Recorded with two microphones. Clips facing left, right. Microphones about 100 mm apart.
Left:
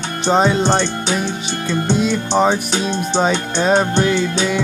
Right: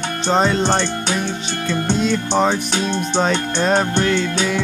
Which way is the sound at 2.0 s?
5° left (ahead or behind).